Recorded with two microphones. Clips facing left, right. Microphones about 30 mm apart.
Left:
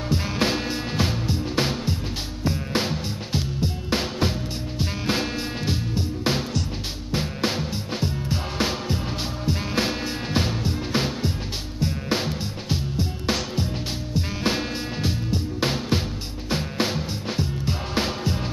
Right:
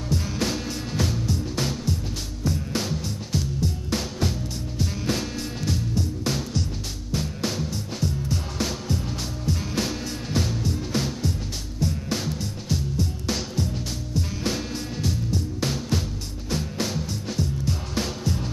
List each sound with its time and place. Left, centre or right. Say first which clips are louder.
0.1 s music: left 3 dB; left